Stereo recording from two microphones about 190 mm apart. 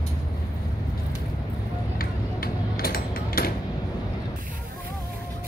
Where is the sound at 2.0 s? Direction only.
50° left (ahead or behind).